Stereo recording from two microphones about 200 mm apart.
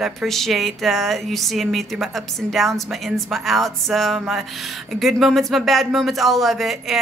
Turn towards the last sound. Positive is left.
turn(degrees=0)  # may be behind; listen again after turning